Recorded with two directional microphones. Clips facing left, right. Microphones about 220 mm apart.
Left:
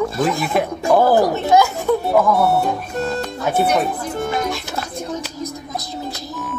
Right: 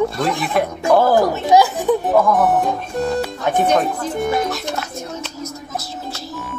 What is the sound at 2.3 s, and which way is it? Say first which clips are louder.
Speech: even; 15° right (ahead or behind).